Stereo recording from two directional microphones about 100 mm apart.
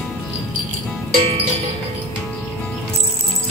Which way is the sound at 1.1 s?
80° right.